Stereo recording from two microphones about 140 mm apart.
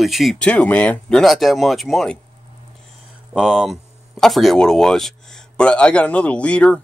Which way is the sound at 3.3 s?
5° right (ahead or behind).